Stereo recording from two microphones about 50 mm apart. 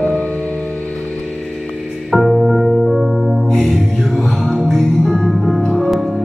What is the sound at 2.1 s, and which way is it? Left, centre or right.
Music, centre.